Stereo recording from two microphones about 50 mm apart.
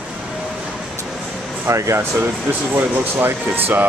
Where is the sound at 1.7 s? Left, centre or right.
Right.